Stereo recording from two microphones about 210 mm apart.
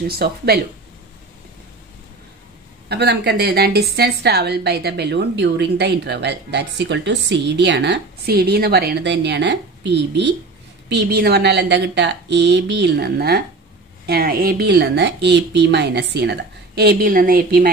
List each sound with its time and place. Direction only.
0.1 s a woman's voice: 45° right (ahead or behind)
2.9 s a woman's voice: 50° right (ahead or behind)